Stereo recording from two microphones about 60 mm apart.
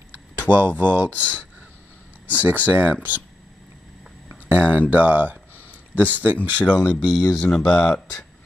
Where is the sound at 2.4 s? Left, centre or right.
Right.